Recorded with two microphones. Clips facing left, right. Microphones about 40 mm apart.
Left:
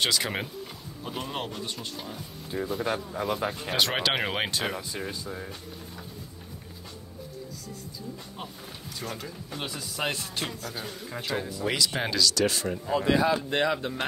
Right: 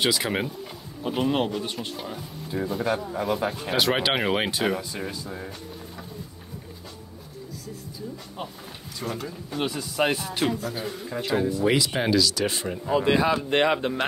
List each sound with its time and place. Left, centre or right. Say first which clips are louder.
0.0 s speech: right 3 dB; centre
9.0 s speech: right 6 dB; centre
13.0 s speech: right 1 dB; right